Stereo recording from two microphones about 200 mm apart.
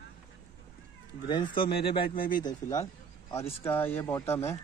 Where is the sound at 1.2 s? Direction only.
20° left (ahead or behind).